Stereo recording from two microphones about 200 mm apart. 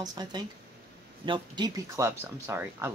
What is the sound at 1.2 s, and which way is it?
Speech, 25° right (ahead or behind).